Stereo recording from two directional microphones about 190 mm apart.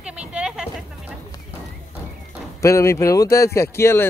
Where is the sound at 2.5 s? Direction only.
15° left (ahead or behind).